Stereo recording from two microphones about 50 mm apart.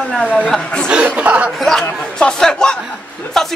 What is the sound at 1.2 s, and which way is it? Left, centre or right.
Speech, right.